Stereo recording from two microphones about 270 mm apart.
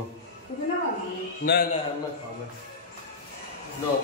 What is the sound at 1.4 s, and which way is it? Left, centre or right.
Speech, left.